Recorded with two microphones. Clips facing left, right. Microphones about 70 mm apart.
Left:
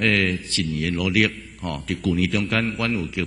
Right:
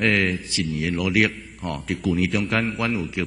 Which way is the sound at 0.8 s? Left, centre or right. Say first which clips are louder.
Even; centre.